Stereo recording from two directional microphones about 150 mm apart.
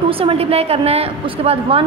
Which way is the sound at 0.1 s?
40° right (ahead or behind).